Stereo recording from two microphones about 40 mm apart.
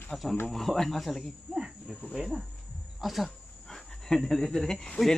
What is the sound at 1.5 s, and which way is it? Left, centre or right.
Cricket, centre.